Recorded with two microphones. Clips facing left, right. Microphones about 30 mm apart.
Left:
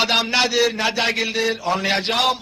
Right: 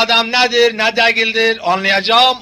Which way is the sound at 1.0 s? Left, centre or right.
Right.